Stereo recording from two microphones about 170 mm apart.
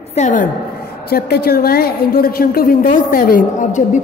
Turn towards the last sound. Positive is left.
turn(degrees=45)  # may be behind; listen again after turning